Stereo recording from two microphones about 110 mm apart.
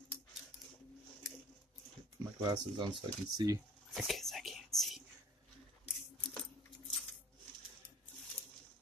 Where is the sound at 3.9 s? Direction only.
Centre (ahead or behind).